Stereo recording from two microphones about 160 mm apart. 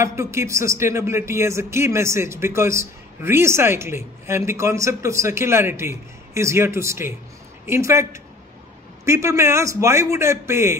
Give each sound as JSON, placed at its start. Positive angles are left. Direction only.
{"t": 0.0, "sound": "speech", "side_deg": -15}